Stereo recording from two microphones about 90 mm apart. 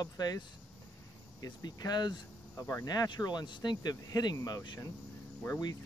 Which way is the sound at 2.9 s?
50° left (ahead or behind).